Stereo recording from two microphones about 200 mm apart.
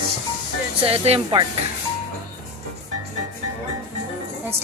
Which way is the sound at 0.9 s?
30° right (ahead or behind).